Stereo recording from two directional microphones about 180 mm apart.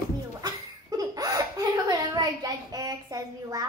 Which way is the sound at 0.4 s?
20° right (ahead or behind).